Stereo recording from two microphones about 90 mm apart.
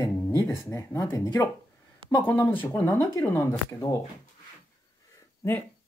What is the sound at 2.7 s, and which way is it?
Speech, 25° left (ahead or behind).